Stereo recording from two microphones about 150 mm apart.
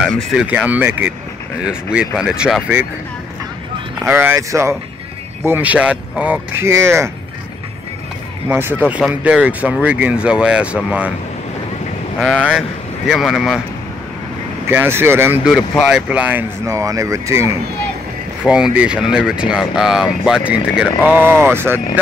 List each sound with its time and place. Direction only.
0.0 s speech: centre (ahead or behind)
4.1 s speech: 15° right (ahead or behind)
8.5 s speech: 15° right (ahead or behind)
12.2 s speech: 5° right (ahead or behind)
14.7 s speech: 15° right (ahead or behind)
15.4 s speech: centre (ahead or behind)
16.1 s speech: 10° right (ahead or behind)
18.5 s speech: 10° right (ahead or behind)